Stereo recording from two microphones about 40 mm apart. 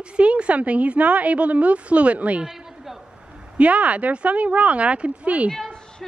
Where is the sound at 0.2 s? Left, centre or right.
Right.